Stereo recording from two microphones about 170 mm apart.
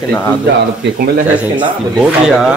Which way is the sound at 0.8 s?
65° right (ahead or behind).